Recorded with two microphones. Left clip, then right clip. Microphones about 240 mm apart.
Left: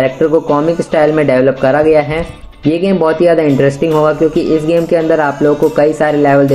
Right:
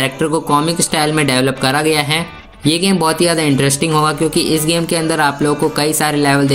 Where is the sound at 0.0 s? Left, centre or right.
Right.